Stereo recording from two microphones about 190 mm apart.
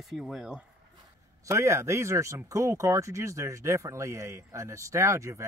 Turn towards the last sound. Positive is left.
turn(degrees=-15)  # may be behind; listen again after turning